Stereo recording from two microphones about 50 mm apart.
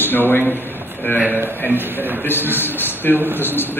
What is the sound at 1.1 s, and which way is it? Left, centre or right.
A man's voice, right.